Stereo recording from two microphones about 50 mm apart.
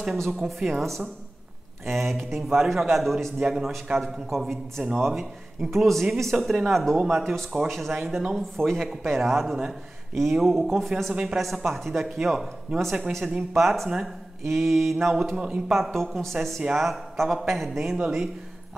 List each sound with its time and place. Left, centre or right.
0.4 s a man's voice: centre
3.3 s a man's voice: centre
3.9 s a man's voice: centre
8.5 s a man's voice: centre
15.3 s a man's voice: centre
15.7 s a man's voice: centre